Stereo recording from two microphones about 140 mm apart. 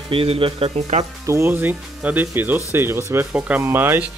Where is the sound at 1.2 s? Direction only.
20° right (ahead or behind).